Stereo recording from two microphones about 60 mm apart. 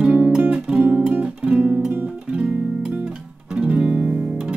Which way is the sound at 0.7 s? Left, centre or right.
Right.